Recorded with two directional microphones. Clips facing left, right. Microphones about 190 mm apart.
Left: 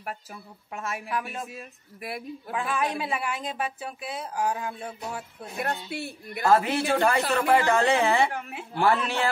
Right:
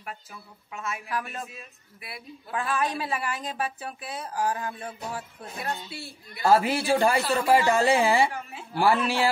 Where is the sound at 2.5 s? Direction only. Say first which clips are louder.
Even; 10° left (ahead or behind).